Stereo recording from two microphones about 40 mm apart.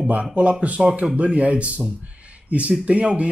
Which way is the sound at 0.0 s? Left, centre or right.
Right.